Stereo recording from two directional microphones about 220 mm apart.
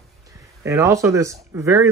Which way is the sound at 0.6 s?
15° right (ahead or behind).